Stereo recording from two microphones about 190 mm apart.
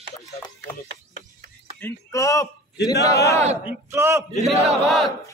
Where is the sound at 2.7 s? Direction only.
60° left (ahead or behind).